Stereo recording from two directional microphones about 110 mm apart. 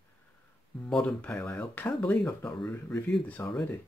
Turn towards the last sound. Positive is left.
turn(degrees=15)  # may be behind; listen again after turning